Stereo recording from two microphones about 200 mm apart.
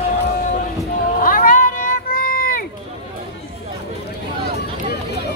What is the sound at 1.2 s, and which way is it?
Cat, 45° left (ahead or behind).